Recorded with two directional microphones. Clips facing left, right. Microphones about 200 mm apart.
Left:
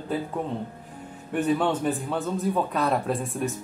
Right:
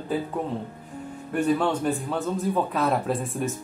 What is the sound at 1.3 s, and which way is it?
Speech, 5° left (ahead or behind).